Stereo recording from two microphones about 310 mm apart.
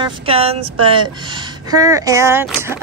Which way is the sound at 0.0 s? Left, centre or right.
Centre.